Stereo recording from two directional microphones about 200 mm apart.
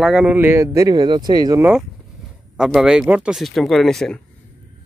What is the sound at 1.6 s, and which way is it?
Speech, 5° right (ahead or behind).